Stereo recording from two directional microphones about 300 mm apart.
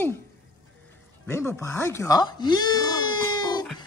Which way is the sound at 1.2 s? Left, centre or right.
Centre.